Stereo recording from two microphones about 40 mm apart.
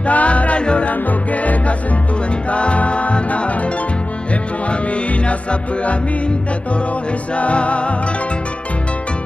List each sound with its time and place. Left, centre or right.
0.0 s music: left
0.8 s music: left
5.2 s music: left
7.3 s music: left